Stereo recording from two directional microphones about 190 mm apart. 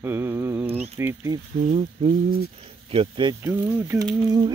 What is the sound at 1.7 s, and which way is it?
Speech, 30° right (ahead or behind).